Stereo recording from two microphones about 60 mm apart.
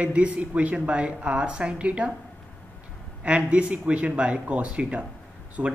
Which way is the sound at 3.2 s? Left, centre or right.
Right.